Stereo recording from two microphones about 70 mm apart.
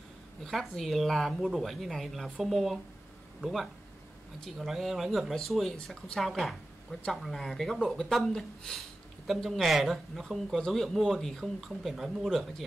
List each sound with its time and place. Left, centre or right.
0.4 s speech: centre